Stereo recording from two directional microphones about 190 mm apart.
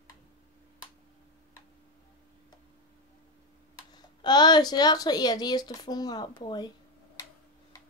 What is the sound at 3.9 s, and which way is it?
Speech, 20° left (ahead or behind).